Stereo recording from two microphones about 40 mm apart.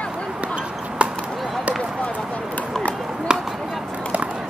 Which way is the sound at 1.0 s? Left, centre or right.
Right.